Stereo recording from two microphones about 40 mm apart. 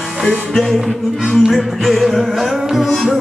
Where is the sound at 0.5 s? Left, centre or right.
Centre.